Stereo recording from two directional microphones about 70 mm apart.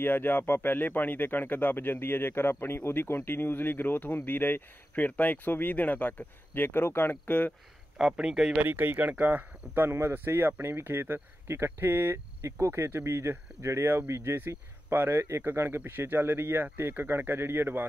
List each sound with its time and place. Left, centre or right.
0.0 s speech: left
8.0 s speech: centre
8.5 s speech: right